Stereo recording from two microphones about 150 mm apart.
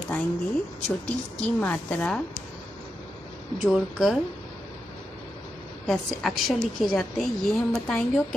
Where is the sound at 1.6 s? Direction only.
10° left (ahead or behind).